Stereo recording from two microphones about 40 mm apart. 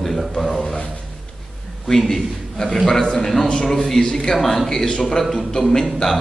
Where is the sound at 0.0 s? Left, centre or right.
Centre.